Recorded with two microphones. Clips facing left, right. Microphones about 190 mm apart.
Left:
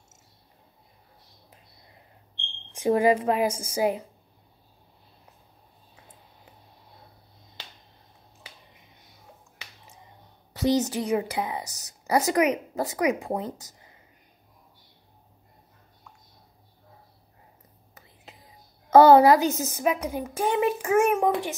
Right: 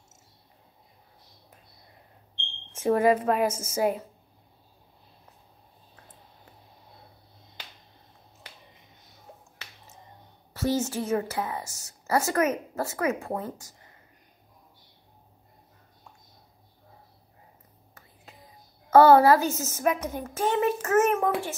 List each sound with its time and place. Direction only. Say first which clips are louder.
2.7 s a woman's voice: left 1 dB; 10° left (ahead or behind)
9.6 s finger snapping: left 2 dB; 15° left (ahead or behind)
10.5 s a woman's voice: left 3 dB; 15° left (ahead or behind)
18.9 s a woman's voice: left 2 dB; 20° left (ahead or behind)